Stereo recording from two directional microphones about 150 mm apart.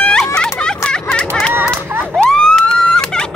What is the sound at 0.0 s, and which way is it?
Music, 5° left (ahead or behind).